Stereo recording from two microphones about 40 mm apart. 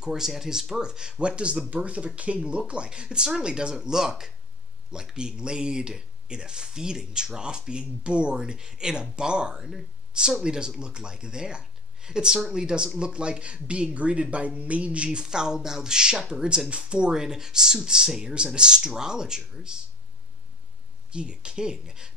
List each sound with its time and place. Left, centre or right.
0.0 s speech: centre
17.1 s speech: centre
21.1 s speech: right